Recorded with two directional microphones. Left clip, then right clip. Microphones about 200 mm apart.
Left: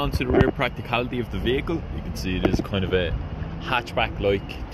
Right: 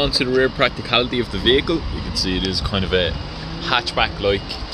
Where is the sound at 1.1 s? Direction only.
90° left.